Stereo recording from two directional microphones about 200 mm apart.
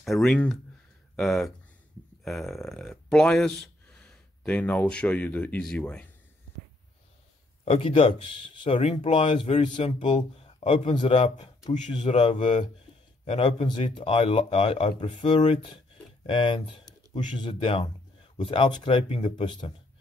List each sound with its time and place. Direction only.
0.0 s speech: centre (ahead or behind)
7.6 s speech: 30° left (ahead or behind)